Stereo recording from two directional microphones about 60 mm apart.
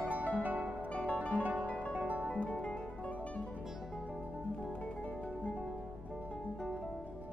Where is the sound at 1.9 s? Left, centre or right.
Right.